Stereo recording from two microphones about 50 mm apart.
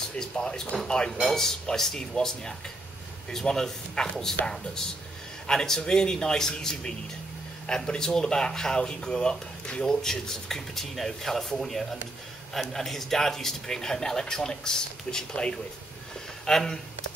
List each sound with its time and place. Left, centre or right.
0.1 s speech: centre
5.5 s speech: centre